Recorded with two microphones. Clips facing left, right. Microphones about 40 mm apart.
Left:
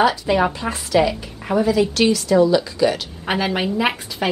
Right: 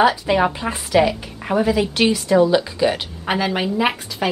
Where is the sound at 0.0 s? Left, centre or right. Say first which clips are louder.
Right 1 dB; centre.